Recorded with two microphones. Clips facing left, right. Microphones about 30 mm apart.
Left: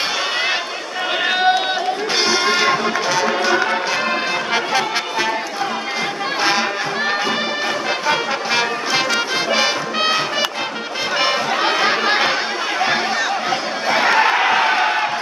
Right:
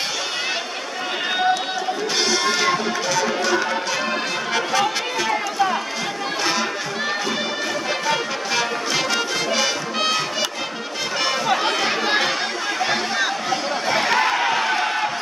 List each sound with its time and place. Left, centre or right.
2.1 s music: left
8.1 s music: left
11.6 s chatter: left
13.8 s a sound: left